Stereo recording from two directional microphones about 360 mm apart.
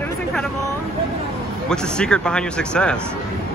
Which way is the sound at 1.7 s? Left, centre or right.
Centre.